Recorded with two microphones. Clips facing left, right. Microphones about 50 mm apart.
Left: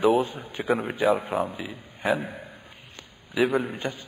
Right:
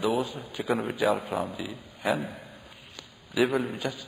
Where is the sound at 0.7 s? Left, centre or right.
Centre.